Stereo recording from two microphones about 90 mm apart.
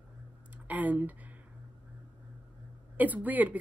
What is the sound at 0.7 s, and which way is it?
Speech, 15° right (ahead or behind).